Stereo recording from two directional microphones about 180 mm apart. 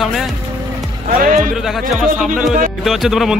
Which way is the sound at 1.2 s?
50° right (ahead or behind).